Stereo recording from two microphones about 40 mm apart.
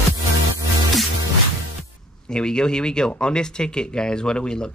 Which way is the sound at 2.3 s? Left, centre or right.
Left.